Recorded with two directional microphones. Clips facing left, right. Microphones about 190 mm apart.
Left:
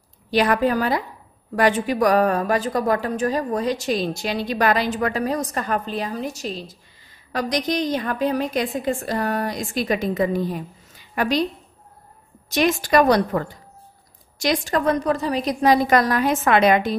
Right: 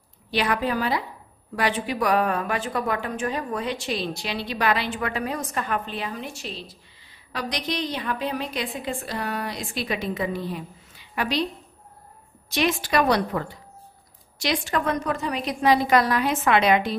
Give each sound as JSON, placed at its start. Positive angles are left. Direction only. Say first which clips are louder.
{"t": 0.3, "sound": "a woman's voice", "louder": "left 6 dB", "side_deg": 45}
{"t": 12.4, "sound": "a woman's voice", "louder": "left 4 dB", "side_deg": 45}